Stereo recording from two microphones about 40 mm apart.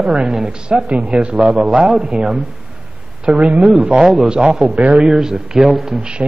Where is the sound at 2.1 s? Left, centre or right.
Right.